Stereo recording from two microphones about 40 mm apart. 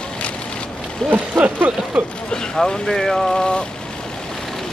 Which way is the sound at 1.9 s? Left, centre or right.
Right.